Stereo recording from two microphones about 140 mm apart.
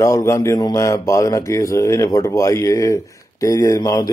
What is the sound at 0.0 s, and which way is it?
Speech, 20° left (ahead or behind).